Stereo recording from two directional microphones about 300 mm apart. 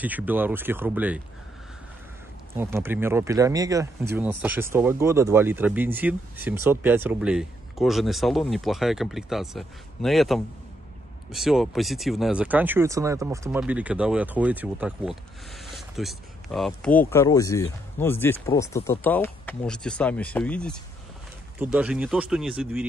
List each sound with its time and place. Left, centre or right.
0.0 s speech: centre
2.5 s speech: centre